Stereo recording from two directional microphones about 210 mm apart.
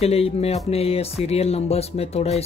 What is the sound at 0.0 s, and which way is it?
Speech, 30° left (ahead or behind).